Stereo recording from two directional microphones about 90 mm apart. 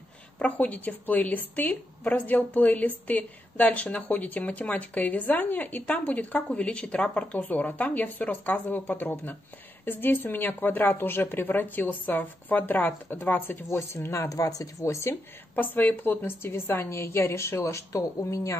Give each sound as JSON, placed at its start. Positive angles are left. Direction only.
{"t": 0.4, "sound": "a woman's voice", "side_deg": 15}
{"t": 14.3, "sound": "speech", "side_deg": 40}
{"t": 15.5, "sound": "a woman's voice", "side_deg": 20}